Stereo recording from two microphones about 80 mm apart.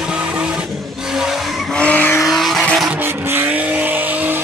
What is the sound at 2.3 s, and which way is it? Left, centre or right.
Vehicle, centre.